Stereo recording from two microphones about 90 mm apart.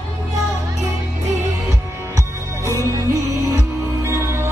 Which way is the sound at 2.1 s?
35° right (ahead or behind).